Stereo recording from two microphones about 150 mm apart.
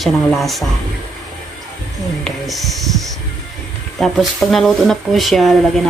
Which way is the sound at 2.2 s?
Centre (ahead or behind).